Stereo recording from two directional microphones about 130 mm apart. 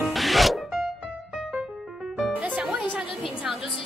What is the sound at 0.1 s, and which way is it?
Zipper, centre (ahead or behind).